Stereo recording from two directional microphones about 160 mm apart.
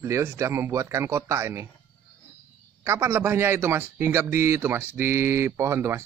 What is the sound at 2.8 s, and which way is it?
A man's voice, 15° right (ahead or behind).